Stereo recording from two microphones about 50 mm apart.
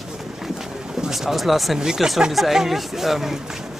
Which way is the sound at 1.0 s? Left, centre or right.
Centre.